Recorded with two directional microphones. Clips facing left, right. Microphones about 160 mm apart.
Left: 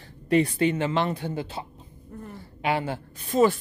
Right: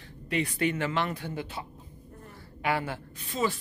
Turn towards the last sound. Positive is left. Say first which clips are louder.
# left 9 dB
turn(degrees=50)  # may be behind; listen again after turning